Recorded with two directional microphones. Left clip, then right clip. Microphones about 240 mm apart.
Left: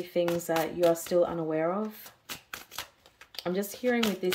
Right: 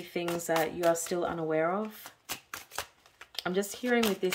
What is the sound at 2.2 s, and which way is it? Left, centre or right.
Shuffling cards, right.